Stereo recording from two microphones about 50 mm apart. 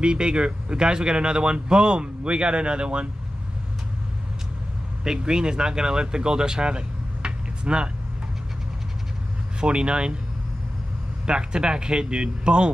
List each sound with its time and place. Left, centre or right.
0.0 s speech: centre
5.0 s speech: centre
9.6 s speech: centre
11.2 s speech: centre